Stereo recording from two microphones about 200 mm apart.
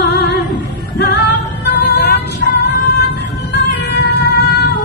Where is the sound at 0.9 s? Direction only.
55° left (ahead or behind).